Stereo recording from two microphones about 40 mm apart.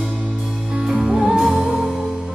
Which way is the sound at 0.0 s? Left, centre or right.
Right.